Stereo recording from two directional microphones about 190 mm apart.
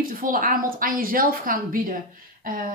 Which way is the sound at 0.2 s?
45° right (ahead or behind).